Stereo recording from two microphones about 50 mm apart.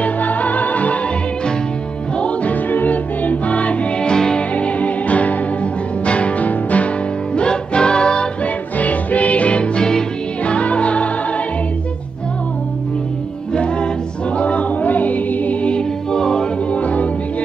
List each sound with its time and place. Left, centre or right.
0.0 s music: left
2.1 s music: left
4.1 s music: centre
8.7 s music: left
13.5 s music: left
15.7 s music: centre
16.7 s music: left